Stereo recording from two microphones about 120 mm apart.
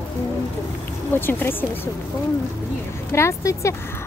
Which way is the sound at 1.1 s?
15° left (ahead or behind).